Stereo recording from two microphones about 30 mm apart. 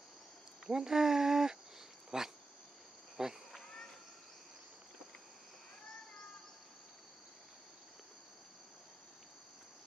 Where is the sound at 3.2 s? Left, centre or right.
Right.